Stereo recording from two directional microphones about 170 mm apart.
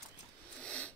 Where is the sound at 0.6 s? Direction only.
5° left (ahead or behind).